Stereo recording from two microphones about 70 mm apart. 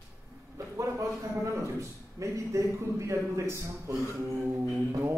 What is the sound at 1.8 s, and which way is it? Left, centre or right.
A man's voice, right.